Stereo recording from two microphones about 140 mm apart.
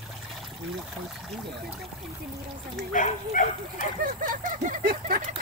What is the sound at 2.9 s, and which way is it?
Speech, 65° left (ahead or behind).